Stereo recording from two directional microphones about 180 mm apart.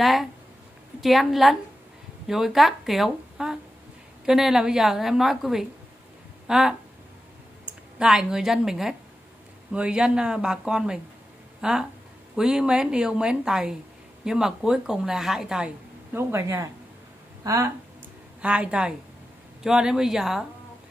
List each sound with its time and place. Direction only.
0.0 s a woman's voice: centre (ahead or behind)
8.0 s speech: 5° right (ahead or behind)
18.4 s a woman's voice: 5° right (ahead or behind)